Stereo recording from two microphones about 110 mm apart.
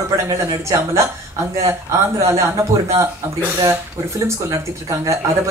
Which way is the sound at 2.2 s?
30° right (ahead or behind).